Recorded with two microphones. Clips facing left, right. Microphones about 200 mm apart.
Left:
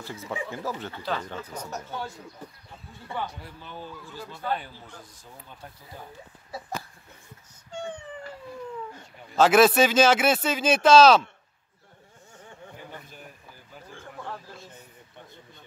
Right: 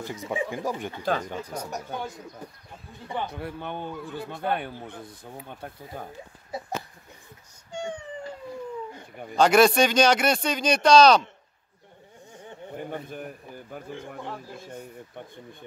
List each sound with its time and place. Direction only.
0.0 s speech: 15° right (ahead or behind)
3.3 s a man's voice: 60° right (ahead or behind)
7.7 s a sound: 10° right (ahead or behind)
9.3 s speech: centre (ahead or behind)
12.7 s a sound: 55° right (ahead or behind)
13.9 s speech: 15° right (ahead or behind)